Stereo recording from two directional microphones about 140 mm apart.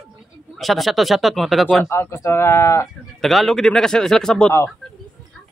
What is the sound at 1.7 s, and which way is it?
Speech, 15° left (ahead or behind).